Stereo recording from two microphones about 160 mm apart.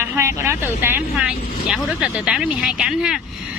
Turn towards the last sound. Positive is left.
turn(degrees=-5)  # may be behind; listen again after turning